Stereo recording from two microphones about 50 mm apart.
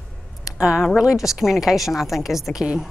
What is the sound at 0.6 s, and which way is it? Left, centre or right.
A woman's voice, centre.